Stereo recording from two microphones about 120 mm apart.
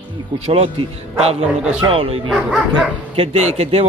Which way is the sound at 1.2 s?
60° right (ahead or behind).